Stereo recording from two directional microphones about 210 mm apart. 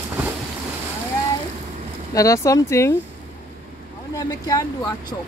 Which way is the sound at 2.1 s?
15° left (ahead or behind).